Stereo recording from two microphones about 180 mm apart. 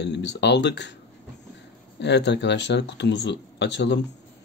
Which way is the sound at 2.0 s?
75° left (ahead or behind).